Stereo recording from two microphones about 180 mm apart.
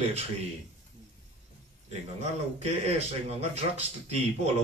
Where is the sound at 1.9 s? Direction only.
35° right (ahead or behind).